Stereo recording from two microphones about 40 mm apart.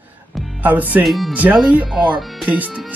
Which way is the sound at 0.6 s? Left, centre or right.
Right.